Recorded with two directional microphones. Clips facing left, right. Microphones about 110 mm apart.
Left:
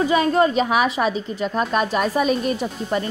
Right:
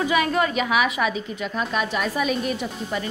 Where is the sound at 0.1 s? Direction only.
35° left (ahead or behind).